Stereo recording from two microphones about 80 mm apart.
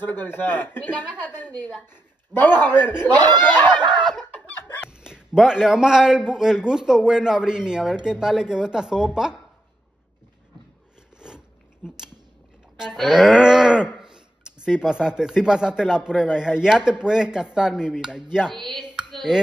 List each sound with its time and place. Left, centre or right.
0.0 s a man's voice: left
2.6 s a man's voice: left
3.7 s chicken: right
4.8 s speech: centre
11.1 s biting: centre
11.8 s speech: centre
18.6 s speech: centre
19.1 s a sound: centre